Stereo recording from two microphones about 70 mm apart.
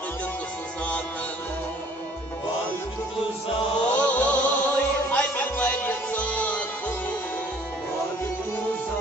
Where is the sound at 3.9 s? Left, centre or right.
Centre.